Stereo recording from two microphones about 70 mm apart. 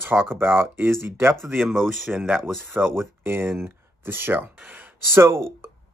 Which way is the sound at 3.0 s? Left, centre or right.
Right.